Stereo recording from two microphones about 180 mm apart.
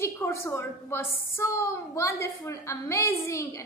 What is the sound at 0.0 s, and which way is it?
A woman's voice, 15° left (ahead or behind).